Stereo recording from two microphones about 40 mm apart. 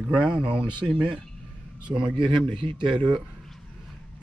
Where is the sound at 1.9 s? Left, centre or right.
Right.